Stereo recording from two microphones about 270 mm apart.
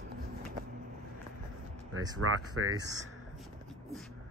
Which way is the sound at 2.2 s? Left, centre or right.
Right.